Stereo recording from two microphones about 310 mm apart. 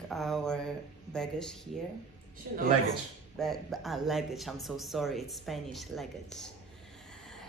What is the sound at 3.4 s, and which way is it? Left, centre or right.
Speech, centre.